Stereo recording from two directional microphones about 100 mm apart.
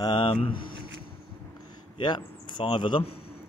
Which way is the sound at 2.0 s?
50° left (ahead or behind).